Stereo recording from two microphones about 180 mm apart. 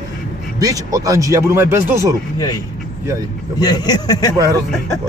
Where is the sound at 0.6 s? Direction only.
20° right (ahead or behind).